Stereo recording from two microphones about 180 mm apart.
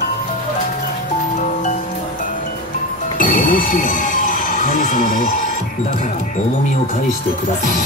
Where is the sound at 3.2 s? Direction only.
50° left (ahead or behind).